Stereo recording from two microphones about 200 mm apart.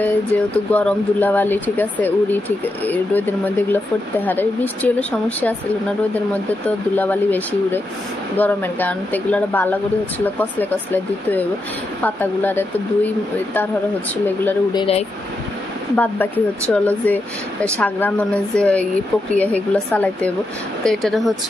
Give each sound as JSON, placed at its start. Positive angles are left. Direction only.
{"t": 0.0, "sound": "speech", "side_deg": 10}
{"t": 14.7, "sound": "speech", "side_deg": 25}
{"t": 16.0, "sound": "speech", "side_deg": 5}